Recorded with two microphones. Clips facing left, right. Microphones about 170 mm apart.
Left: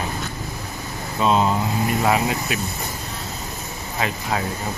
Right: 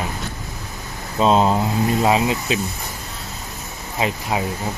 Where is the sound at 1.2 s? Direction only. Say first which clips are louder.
Right 3 dB; 30° right (ahead or behind).